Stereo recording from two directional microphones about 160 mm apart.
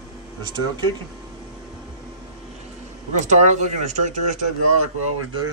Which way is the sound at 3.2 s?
50° right (ahead or behind).